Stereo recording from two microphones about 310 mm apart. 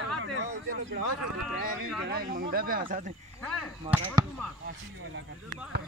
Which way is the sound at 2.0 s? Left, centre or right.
Right.